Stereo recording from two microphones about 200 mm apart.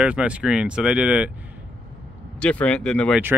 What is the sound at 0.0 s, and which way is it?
Speech, 5° right (ahead or behind).